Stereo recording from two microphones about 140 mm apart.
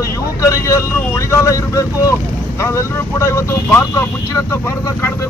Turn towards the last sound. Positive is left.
turn(degrees=15)  # may be behind; listen again after turning